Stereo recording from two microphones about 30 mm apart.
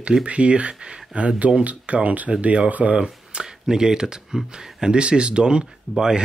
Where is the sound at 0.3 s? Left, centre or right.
Right.